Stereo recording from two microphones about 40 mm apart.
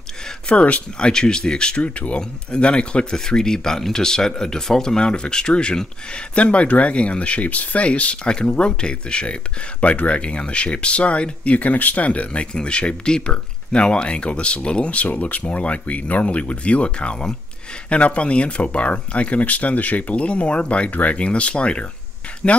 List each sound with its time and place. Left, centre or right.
0.5 s speech: left
0.9 s speech: centre
1.8 s speech: left
15.0 s speech: left
17.8 s speech: left